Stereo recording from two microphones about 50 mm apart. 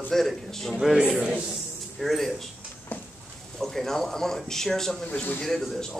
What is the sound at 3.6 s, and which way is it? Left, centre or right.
Speech, centre.